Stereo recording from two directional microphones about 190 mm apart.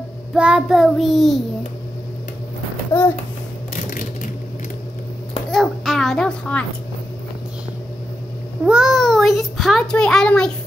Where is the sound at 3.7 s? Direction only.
45° left (ahead or behind).